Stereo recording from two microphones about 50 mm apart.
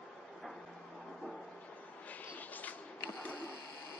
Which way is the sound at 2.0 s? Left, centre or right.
Left.